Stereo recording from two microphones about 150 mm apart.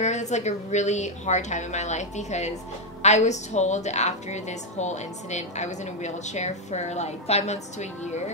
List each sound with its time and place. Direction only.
0.0 s a woman's voice: 50° left (ahead or behind)